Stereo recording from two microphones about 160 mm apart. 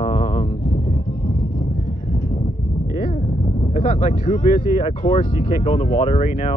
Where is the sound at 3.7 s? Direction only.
50° left (ahead or behind).